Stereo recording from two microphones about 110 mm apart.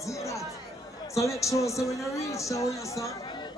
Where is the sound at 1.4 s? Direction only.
30° left (ahead or behind).